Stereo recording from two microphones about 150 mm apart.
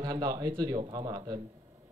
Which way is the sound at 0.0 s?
30° right (ahead or behind).